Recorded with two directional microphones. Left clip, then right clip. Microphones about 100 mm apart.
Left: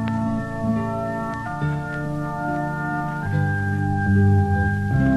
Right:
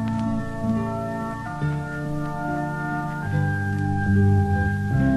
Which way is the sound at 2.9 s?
35° left (ahead or behind).